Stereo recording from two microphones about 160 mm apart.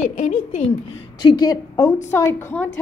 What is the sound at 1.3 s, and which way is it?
A woman's voice, 25° left (ahead or behind).